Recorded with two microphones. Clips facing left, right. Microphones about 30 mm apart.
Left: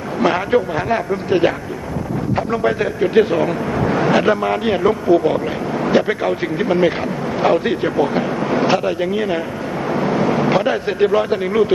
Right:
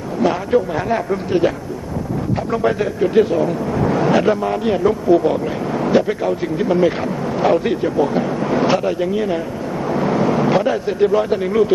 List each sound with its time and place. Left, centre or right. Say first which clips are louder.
0.2 s a man's voice: left 1 dB; left
0.7 s speech: even; centre
2.8 s speech: left 1 dB; left
3.3 s speech: even; left
3.7 s a sound: even; left
4.4 s speech: even; left
5.0 s speech: even; centre
9.0 s speech: even; left
9.8 s vehicle: even; centre
10.9 s speech: even; left